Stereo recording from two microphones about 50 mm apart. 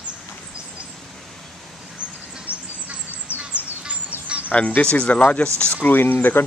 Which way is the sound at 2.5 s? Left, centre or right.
Right.